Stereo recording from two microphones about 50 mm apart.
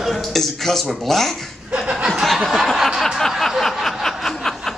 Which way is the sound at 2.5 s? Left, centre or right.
Centre.